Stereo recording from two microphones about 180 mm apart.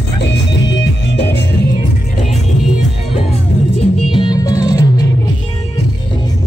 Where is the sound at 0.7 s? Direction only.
75° left (ahead or behind).